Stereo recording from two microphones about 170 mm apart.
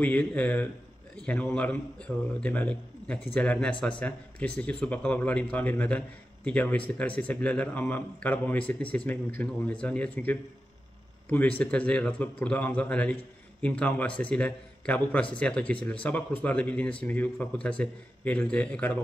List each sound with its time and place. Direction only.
0.0 s a man's voice: 10° left (ahead or behind)